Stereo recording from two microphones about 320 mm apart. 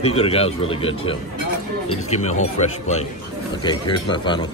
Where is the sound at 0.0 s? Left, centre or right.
Centre.